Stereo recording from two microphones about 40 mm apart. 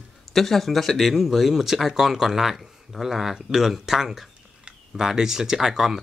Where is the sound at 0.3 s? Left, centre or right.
Centre.